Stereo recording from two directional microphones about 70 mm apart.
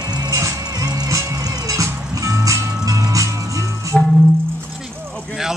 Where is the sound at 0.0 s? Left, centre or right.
Right.